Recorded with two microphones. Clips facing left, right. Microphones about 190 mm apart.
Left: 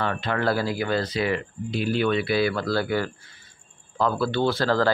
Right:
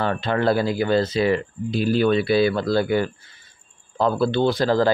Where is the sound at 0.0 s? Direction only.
30° right (ahead or behind).